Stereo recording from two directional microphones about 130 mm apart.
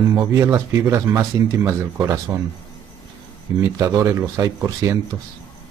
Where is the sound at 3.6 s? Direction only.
25° right (ahead or behind).